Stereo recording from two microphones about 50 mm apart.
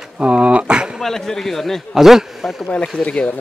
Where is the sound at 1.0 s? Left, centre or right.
Centre.